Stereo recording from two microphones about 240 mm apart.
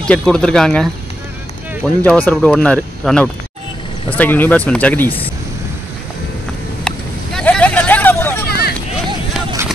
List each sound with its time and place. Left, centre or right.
0.0 s speech: centre
2.0 s speech: centre
6.9 s vehicle: centre
7.3 s hubbub: centre
8.5 s hubbub: left